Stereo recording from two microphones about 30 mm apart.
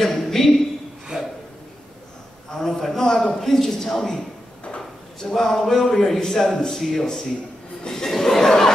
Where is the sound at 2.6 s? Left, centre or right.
Centre.